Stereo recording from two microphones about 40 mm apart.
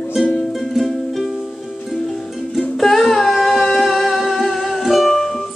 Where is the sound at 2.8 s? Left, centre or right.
Centre.